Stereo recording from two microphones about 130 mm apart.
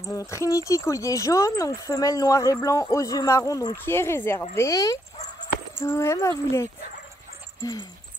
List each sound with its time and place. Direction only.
0.0 s speech: 25° left (ahead or behind)